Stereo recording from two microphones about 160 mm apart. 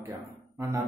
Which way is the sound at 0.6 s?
20° right (ahead or behind).